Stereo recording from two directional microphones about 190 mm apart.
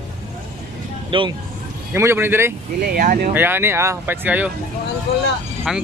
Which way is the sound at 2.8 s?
50° right (ahead or behind).